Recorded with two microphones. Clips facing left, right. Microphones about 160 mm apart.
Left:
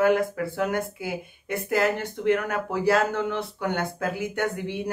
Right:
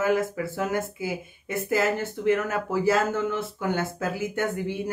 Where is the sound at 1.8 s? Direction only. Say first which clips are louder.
Left 2 dB; 60° left (ahead or behind).